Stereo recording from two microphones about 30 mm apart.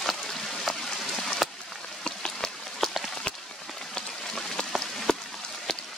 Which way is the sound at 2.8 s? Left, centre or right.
Centre.